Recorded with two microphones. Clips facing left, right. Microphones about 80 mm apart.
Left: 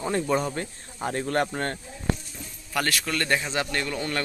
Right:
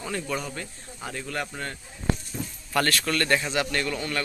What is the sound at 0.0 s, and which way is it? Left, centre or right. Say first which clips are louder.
Speech: left 6 dB; left.